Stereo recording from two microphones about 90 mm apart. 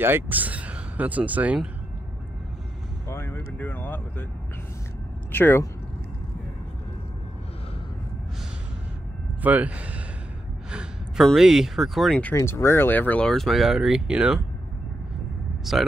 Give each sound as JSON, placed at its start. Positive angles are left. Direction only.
{"t": 0.0, "sound": "speech", "side_deg": -20}
{"t": 3.1, "sound": "speech", "side_deg": 25}
{"t": 5.3, "sound": "speech", "side_deg": 25}
{"t": 9.4, "sound": "speech", "side_deg": -15}
{"t": 10.7, "sound": "gasp", "side_deg": -10}
{"t": 11.2, "sound": "speech", "side_deg": -5}
{"t": 12.2, "sound": "speech", "side_deg": 15}
{"t": 12.5, "sound": "speech", "side_deg": 30}
{"t": 13.3, "sound": "speech", "side_deg": 0}
{"t": 15.7, "sound": "speech", "side_deg": 0}